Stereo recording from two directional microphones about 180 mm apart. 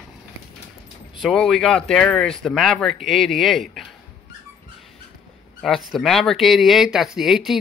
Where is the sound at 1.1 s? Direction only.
Centre (ahead or behind).